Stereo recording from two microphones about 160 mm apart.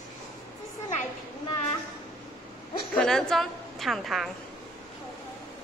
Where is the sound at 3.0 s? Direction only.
5° left (ahead or behind).